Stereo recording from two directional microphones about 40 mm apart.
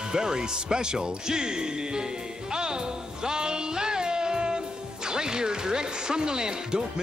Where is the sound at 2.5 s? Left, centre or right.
Centre.